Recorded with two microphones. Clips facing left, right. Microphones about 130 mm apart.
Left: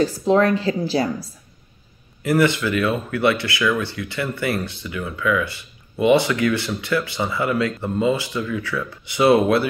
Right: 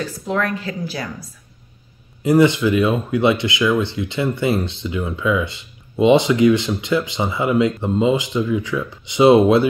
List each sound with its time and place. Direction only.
0.0 s a woman's voice: 30° left (ahead or behind)
2.2 s speech: 20° right (ahead or behind)